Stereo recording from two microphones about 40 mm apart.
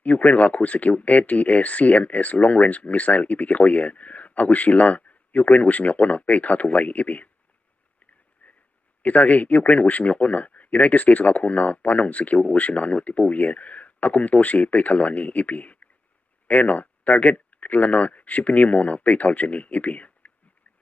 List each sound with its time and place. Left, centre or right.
0.0 s speech: left
9.0 s speech: left